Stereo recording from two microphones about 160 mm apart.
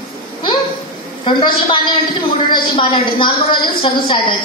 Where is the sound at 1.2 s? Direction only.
30° left (ahead or behind).